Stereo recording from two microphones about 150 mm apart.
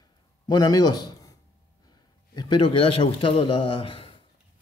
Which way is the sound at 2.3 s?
35° left (ahead or behind).